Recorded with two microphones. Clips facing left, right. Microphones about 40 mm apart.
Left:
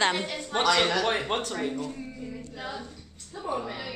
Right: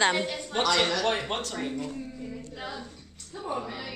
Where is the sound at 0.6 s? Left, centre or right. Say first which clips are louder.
Left 1 dB; centre.